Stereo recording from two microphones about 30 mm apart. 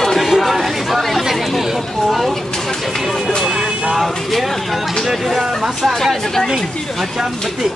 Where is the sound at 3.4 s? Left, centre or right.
Centre.